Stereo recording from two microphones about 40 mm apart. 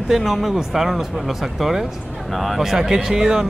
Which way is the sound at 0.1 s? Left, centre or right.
Centre.